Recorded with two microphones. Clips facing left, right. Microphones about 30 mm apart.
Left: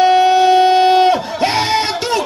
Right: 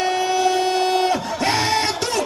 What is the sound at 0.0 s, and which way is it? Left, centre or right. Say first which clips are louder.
Music: left 9 dB; left.